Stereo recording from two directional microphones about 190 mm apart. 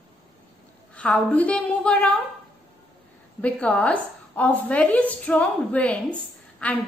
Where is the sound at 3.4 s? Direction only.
5° left (ahead or behind).